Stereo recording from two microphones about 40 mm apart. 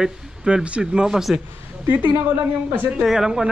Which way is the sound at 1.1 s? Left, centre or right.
Centre.